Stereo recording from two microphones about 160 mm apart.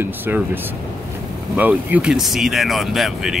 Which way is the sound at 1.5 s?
10° right (ahead or behind).